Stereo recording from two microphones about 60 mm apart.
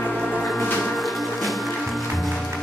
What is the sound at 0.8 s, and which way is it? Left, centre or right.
Music, centre.